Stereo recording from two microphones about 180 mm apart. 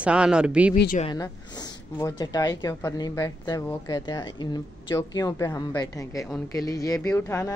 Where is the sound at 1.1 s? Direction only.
20° left (ahead or behind).